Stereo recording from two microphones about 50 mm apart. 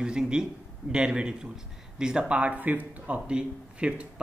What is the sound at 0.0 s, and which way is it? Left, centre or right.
A man's voice, centre.